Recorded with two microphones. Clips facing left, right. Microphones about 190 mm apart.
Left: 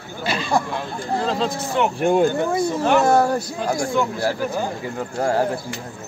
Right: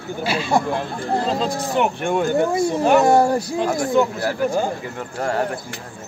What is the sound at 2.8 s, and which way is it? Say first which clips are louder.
Speech: right 2 dB; 15° right (ahead or behind).